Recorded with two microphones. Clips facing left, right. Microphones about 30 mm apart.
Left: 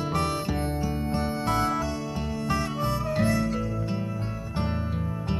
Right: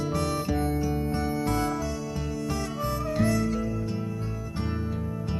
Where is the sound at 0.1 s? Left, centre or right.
Left.